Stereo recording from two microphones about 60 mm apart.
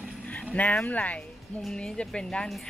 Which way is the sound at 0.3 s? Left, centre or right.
Left.